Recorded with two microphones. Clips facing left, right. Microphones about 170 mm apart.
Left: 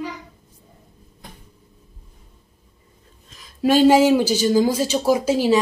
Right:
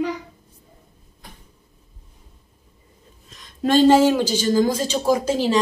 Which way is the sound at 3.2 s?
Centre (ahead or behind).